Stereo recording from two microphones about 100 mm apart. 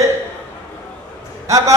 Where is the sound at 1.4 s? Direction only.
30° right (ahead or behind).